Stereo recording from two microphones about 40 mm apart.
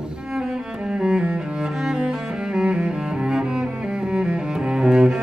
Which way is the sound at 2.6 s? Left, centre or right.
Right.